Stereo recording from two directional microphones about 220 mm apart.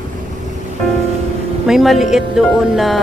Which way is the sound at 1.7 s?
Centre (ahead or behind).